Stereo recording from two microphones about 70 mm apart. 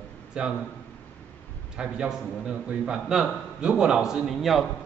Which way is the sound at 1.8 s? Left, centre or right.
Centre.